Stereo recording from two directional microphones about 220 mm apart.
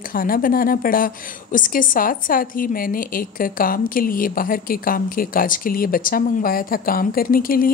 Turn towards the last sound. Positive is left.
turn(degrees=40)  # may be behind; listen again after turning